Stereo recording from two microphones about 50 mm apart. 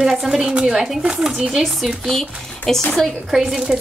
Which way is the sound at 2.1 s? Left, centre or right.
Centre.